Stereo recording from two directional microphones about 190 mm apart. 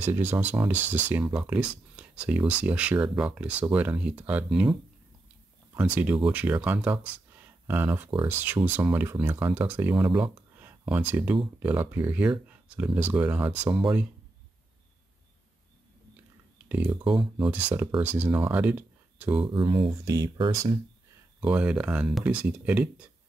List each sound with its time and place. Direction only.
0.0 s speech: 10° right (ahead or behind)
6.3 s speech: 10° right (ahead or behind)
10.0 s speech: 25° right (ahead or behind)
10.3 s a sound: 10° right (ahead or behind)
11.6 s speech: 10° right (ahead or behind)
16.6 s speech: 10° right (ahead or behind)
19.4 s speech: 25° right (ahead or behind)
21.4 s speech: 5° right (ahead or behind)